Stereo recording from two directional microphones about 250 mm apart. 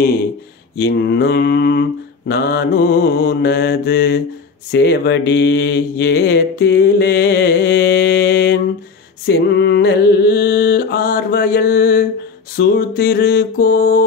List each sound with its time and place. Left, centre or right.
0.7 s mantra: left